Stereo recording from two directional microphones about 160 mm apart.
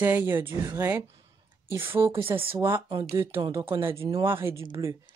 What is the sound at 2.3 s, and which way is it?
Speech, 35° right (ahead or behind).